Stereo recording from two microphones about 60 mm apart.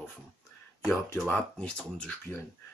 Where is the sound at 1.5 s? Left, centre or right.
Centre.